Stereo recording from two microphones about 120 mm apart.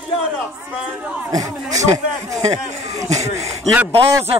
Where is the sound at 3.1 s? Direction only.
65° right (ahead or behind).